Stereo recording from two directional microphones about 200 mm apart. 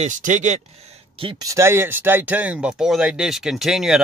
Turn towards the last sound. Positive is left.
turn(degrees=-5)  # may be behind; listen again after turning